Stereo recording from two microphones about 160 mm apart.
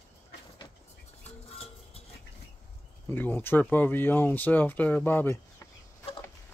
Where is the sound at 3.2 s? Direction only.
15° left (ahead or behind).